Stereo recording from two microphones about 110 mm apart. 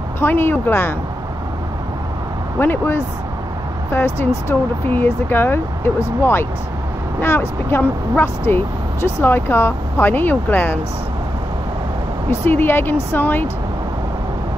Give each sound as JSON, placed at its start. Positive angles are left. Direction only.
{"t": 0.2, "sound": "speech", "side_deg": 20}
{"t": 2.6, "sound": "speech", "side_deg": 20}
{"t": 12.3, "sound": "speech", "side_deg": 20}